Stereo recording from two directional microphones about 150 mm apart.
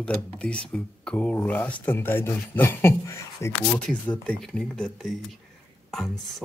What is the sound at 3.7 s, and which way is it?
Speech, 10° left (ahead or behind).